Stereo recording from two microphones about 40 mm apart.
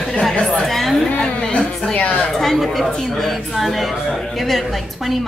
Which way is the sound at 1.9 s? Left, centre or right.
Left.